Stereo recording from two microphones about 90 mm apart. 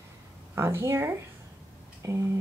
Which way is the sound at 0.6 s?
30° right (ahead or behind).